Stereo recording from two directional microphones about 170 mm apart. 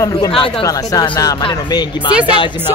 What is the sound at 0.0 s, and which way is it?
Speech, 25° left (ahead or behind).